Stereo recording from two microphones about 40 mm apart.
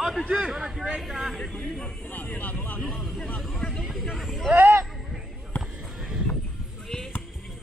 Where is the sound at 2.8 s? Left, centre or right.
Centre.